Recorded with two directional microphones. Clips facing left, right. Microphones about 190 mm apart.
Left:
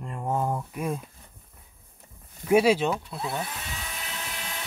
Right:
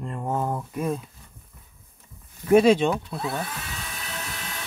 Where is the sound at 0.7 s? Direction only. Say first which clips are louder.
Right 3 dB; 10° left (ahead or behind).